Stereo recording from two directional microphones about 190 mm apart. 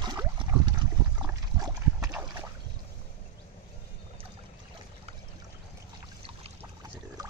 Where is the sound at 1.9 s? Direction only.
15° right (ahead or behind).